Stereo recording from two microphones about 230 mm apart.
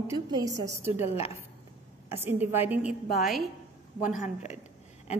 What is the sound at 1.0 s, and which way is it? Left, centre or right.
Speech, left.